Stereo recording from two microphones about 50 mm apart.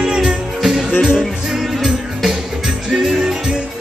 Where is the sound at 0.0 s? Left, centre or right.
Centre.